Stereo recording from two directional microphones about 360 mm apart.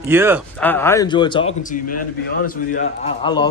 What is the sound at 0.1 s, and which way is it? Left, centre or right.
Speech, centre.